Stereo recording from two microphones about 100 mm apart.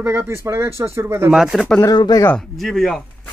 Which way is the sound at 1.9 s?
40° left (ahead or behind).